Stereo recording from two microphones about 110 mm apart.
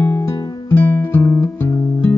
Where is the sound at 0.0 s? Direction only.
25° left (ahead or behind).